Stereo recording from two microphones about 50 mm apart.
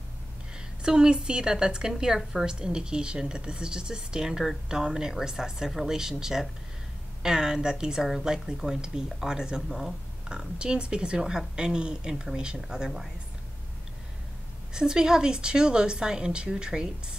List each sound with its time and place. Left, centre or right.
0.8 s a woman's voice: centre
10.2 s a woman's voice: centre
14.7 s a woman's voice: centre